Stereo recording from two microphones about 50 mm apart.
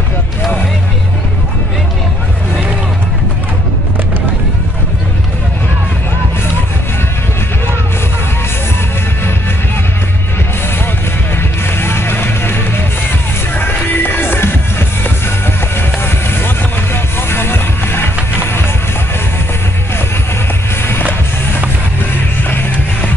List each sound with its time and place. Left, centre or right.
11.8 s music: left
16.3 s vehicle: left